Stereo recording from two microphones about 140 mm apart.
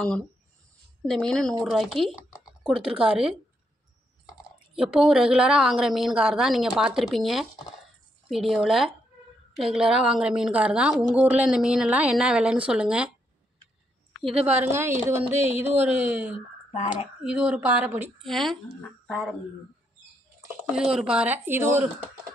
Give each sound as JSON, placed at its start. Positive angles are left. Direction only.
{"t": 1.0, "sound": "a woman's voice", "side_deg": 0}
{"t": 14.2, "sound": "a woman's voice", "side_deg": -10}
{"t": 16.7, "sound": "speech", "side_deg": 50}
{"t": 17.2, "sound": "a woman's voice", "side_deg": -5}
{"t": 18.2, "sound": "speech", "side_deg": 0}
{"t": 20.7, "sound": "a woman's voice", "side_deg": -5}